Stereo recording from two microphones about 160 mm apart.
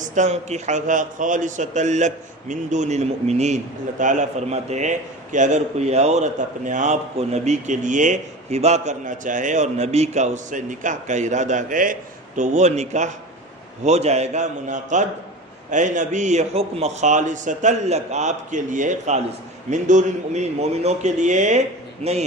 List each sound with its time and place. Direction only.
0.1 s a man's voice: 45° right (ahead or behind)